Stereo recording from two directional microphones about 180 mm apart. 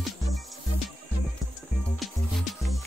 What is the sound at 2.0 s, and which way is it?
Music, centre (ahead or behind).